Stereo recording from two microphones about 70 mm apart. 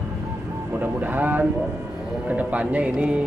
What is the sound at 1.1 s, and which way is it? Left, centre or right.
A man's voice, right.